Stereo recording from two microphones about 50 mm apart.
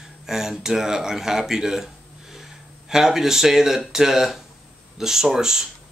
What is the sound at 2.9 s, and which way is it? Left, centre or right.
Speech, centre.